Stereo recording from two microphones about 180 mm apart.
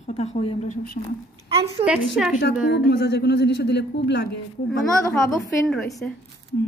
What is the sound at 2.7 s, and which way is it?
Speech, 60° left (ahead or behind).